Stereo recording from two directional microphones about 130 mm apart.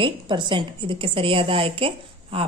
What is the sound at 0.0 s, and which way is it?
A woman's voice, 40° right (ahead or behind).